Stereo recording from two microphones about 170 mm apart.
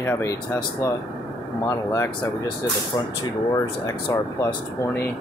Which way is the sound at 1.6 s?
15° left (ahead or behind).